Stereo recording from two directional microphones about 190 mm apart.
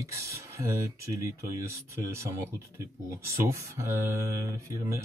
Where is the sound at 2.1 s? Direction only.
15° right (ahead or behind).